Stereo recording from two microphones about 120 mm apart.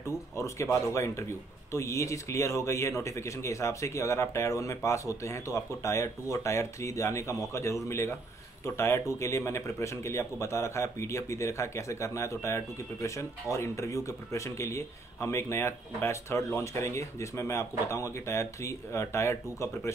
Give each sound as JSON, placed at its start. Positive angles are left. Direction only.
{"t": 0.0, "sound": "a man's voice", "side_deg": 25}